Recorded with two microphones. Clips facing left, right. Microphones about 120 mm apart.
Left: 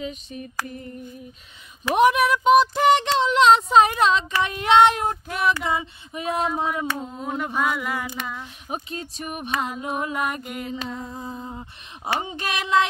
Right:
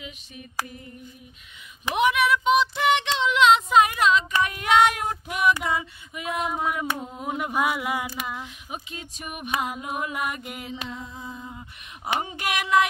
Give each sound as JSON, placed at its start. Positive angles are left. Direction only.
{"t": 0.0, "sound": "female singing", "side_deg": 35}
{"t": 2.0, "sound": "female singing", "side_deg": 40}
{"t": 6.9, "sound": "a sound", "side_deg": -10}
{"t": 8.6, "sound": "female singing", "side_deg": 40}
{"t": 9.5, "sound": "a sound", "side_deg": -10}
{"t": 9.8, "sound": "female singing", "side_deg": 30}
{"t": 10.4, "sound": "mantra", "side_deg": -5}
{"t": 10.7, "sound": "a sound", "side_deg": 40}
{"t": 12.1, "sound": "female singing", "side_deg": 25}